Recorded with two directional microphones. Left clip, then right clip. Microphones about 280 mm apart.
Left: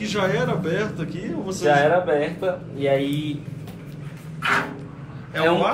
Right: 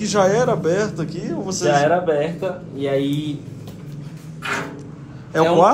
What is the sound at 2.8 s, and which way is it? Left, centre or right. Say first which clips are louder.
Speech: even; right.